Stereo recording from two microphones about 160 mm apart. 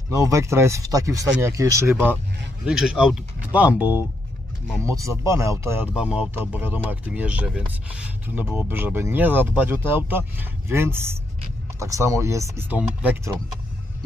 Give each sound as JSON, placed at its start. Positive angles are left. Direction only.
{"t": 0.1, "sound": "speech", "side_deg": -20}